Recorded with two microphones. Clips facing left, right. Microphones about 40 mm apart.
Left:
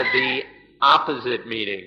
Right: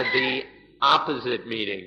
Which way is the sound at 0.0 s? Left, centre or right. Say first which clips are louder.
Left 3 dB; centre.